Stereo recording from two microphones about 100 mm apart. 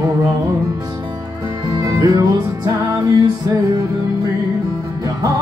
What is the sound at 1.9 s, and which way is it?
Music, 40° right (ahead or behind).